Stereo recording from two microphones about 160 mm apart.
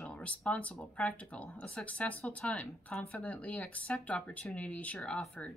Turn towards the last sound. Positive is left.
turn(degrees=5)  # may be behind; listen again after turning